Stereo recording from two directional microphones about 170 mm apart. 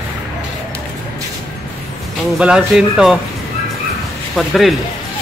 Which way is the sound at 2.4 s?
5° right (ahead or behind).